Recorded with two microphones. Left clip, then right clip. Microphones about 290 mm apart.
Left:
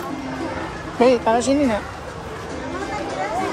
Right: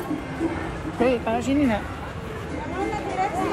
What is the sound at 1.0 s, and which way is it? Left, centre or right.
Speech, left.